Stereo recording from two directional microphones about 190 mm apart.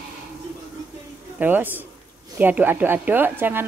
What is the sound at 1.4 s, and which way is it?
A woman's voice, 10° right (ahead or behind).